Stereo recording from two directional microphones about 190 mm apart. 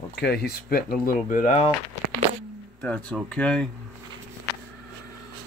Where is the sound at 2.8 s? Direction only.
10° left (ahead or behind).